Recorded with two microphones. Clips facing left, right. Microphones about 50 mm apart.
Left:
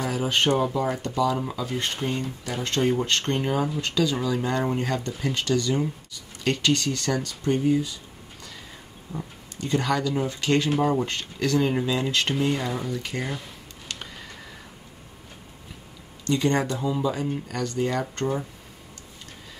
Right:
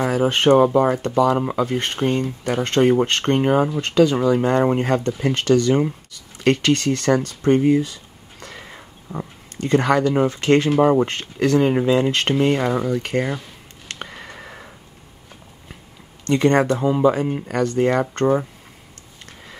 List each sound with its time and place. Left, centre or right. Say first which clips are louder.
0.0 s speech: right 6 dB; right
13.8 s a sound: right 5 dB; right
16.3 s speech: right 7 dB; right